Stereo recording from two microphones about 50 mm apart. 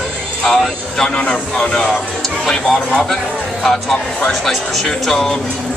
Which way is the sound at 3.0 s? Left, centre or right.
Centre.